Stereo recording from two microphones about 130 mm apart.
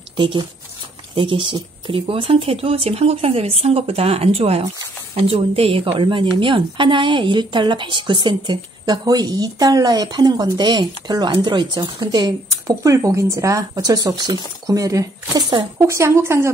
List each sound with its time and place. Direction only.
0.1 s speech: 40° right (ahead or behind); by 16.5 s 20° right (ahead or behind)